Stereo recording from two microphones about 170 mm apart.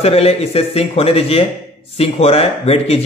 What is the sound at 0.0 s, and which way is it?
A man's voice, 35° left (ahead or behind).